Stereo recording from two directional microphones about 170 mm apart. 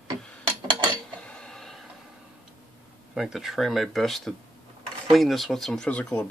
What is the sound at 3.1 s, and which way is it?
Speech, centre (ahead or behind).